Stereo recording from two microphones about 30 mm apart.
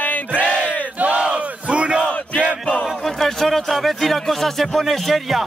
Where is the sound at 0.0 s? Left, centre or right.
Left.